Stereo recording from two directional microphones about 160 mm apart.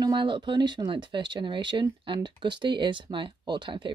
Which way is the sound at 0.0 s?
30° right (ahead or behind).